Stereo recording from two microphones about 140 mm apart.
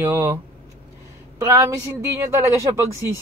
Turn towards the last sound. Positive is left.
turn(degrees=-20)  # may be behind; listen again after turning